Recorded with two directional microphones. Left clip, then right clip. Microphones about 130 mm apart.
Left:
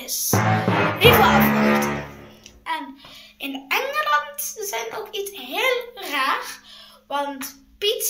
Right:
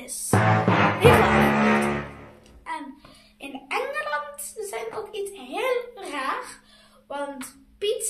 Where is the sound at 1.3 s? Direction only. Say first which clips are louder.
Left 2 dB; 30° left (ahead or behind).